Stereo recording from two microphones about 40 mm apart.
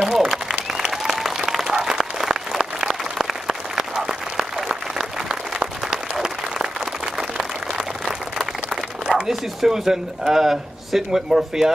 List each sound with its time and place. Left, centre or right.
0.0 s applause: centre
0.3 s applause: centre
7.2 s a sound: centre
9.3 s speech: centre